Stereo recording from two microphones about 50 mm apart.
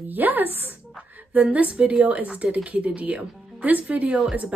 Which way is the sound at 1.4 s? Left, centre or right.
Right.